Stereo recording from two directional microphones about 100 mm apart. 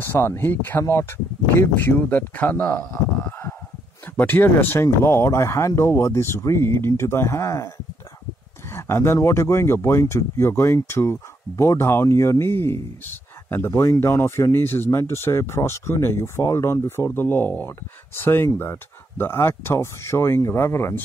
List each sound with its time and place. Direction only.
0.0 s speech: 25° left (ahead or behind)